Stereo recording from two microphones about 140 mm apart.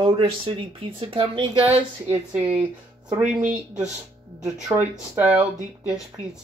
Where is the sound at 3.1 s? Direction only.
10° right (ahead or behind).